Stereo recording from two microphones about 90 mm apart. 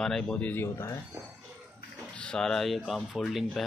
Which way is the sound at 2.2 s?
10° left (ahead or behind).